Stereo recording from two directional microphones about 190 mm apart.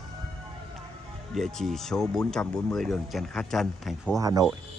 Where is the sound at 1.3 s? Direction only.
Centre (ahead or behind).